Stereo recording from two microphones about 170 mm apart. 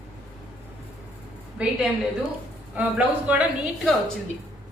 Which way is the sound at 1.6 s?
5° right (ahead or behind).